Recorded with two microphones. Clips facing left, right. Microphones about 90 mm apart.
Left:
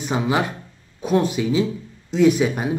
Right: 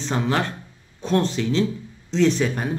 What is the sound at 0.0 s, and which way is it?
Speech, 10° left (ahead or behind).